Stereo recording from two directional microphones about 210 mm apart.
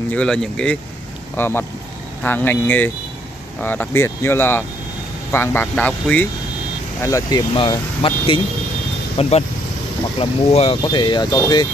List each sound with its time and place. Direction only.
0.1 s speech: 5° left (ahead or behind); by 11.6 s 20° left (ahead or behind)